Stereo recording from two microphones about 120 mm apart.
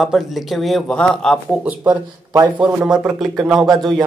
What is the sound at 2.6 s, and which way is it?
Speech, 10° right (ahead or behind).